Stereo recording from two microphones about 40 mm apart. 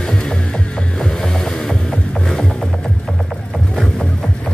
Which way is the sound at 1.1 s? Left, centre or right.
Centre.